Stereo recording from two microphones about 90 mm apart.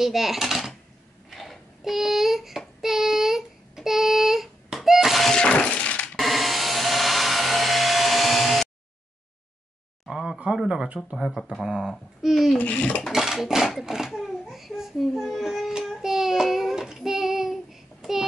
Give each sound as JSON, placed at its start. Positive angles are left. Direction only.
{"t": 0.0, "sound": "speech", "side_deg": -5}
{"t": 1.3, "sound": "child singing", "side_deg": 0}
{"t": 6.1, "sound": "tools", "side_deg": 0}
{"t": 10.0, "sound": "a sound", "side_deg": -5}
{"t": 11.1, "sound": "a child's voice", "side_deg": 0}
{"t": 12.5, "sound": "speech", "side_deg": 15}
{"t": 13.0, "sound": "a child's voice", "side_deg": -5}